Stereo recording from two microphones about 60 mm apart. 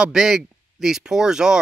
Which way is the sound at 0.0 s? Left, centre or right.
Centre.